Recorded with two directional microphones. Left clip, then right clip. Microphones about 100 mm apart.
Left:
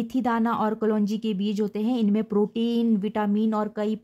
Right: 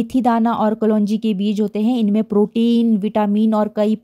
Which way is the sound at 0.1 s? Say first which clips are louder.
Right 8 dB; 45° right (ahead or behind).